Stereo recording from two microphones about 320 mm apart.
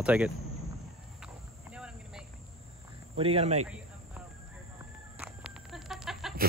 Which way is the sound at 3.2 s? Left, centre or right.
Centre.